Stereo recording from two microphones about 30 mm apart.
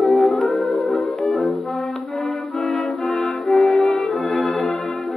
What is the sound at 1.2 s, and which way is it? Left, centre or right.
Brass instrument, centre.